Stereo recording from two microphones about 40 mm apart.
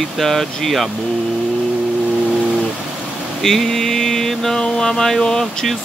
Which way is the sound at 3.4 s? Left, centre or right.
Centre.